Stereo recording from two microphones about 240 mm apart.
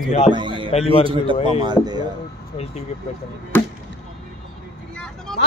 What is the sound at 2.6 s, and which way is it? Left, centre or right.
Speech, left.